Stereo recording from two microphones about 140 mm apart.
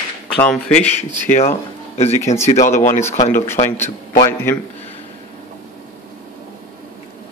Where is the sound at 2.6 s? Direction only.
20° left (ahead or behind).